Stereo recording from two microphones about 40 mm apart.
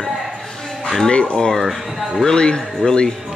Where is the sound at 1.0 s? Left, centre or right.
Left.